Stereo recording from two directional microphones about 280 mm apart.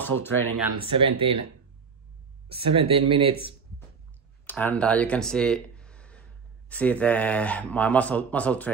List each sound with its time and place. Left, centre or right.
0.0 s speech: centre
0.8 s speech: centre
2.5 s speech: centre
4.5 s speech: centre